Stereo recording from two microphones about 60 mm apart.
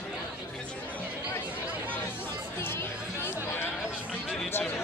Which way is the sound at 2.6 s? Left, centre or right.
Left.